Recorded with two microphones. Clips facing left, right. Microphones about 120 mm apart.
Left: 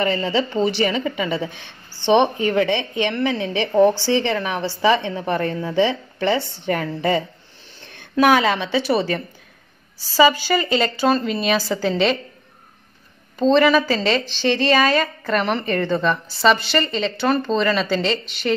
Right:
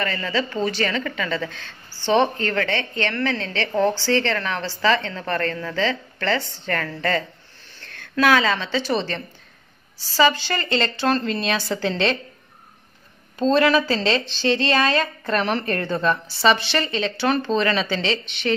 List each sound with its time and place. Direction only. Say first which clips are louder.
0.0 s a woman's voice: left 4 dB; 20° left (ahead or behind); by 12.2 s 5° left (ahead or behind)
13.4 s a woman's voice: left 3 dB; centre (ahead or behind)